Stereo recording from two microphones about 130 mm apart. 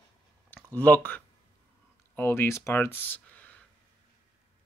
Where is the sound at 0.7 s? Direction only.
15° left (ahead or behind).